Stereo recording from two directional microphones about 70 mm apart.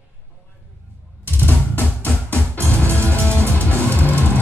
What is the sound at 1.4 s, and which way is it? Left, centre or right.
Music, left.